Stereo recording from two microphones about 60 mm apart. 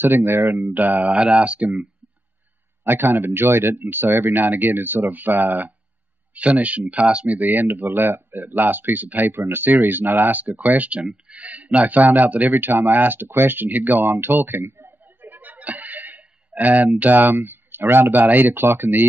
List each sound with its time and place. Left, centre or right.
0.0 s speech: right
2.8 s speech: right; by 7.3 s centre
7.3 s speech: right